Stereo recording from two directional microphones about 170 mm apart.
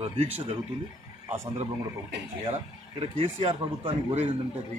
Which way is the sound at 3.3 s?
35° right (ahead or behind).